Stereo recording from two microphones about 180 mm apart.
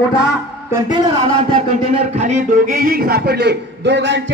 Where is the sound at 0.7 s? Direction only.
25° right (ahead or behind).